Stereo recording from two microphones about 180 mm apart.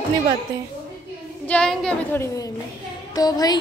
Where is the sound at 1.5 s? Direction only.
5° left (ahead or behind).